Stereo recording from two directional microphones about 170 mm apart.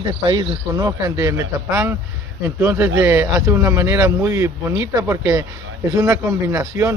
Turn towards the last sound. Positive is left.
turn(degrees=-15)  # may be behind; listen again after turning